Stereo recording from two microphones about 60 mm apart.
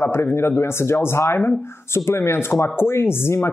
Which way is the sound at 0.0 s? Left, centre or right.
Left.